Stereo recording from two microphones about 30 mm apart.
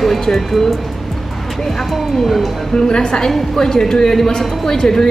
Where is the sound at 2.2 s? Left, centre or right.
Centre.